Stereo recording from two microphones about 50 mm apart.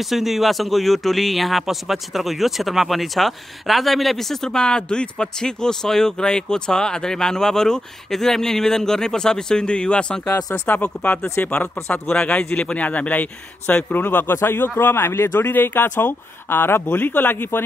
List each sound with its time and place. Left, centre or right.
0.0 s speech: centre
10.7 s speech: left
11.9 s speech: left
12.8 s speech: left
15.3 s speech: left